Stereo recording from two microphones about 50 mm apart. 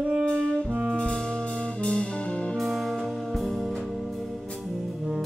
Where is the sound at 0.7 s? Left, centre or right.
Right.